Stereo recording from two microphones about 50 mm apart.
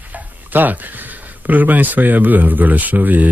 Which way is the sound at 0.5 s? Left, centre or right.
Right.